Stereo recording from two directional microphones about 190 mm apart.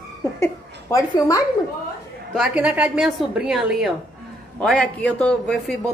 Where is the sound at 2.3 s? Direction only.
5° right (ahead or behind).